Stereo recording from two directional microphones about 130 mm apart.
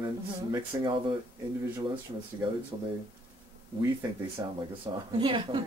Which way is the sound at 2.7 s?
35° right (ahead or behind).